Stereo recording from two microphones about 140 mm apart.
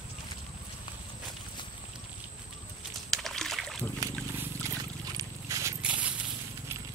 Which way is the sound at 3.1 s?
5° left (ahead or behind).